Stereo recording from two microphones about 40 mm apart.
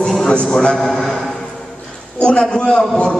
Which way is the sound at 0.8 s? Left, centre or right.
Centre.